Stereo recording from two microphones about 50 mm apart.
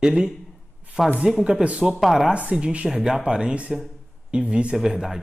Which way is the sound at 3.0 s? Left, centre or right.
Centre.